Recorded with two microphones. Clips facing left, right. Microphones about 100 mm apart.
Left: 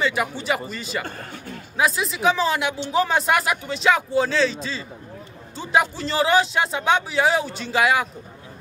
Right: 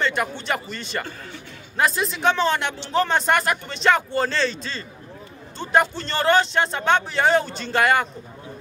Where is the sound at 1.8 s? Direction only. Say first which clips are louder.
Even; centre (ahead or behind).